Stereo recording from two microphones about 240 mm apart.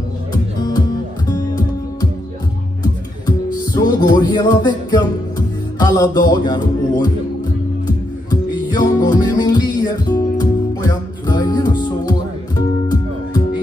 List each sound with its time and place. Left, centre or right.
0.6 s music: centre
3.7 s music: centre